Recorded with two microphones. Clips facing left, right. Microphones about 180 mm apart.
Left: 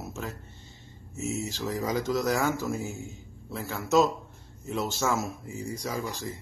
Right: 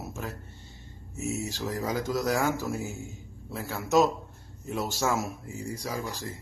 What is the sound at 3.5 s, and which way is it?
Speech, 15° right (ahead or behind).